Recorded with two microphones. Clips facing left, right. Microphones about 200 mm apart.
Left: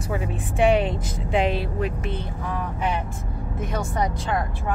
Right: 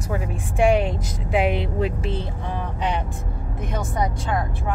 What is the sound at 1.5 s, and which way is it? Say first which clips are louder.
Speech: right 2 dB; 30° right (ahead or behind).